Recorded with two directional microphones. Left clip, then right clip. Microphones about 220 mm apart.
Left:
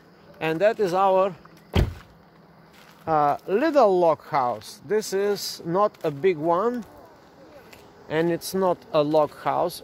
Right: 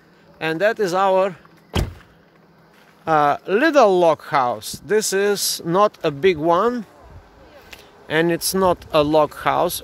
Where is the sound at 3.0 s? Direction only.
35° right (ahead or behind).